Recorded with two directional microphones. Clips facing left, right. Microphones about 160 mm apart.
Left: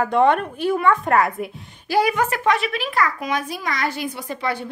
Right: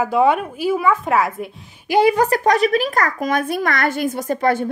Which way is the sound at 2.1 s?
35° right (ahead or behind).